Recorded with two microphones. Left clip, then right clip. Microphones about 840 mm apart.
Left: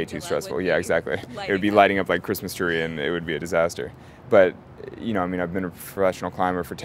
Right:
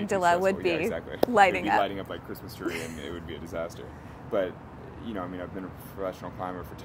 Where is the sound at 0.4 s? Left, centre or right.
Left.